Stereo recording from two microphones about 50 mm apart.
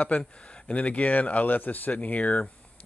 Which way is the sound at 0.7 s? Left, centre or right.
Left.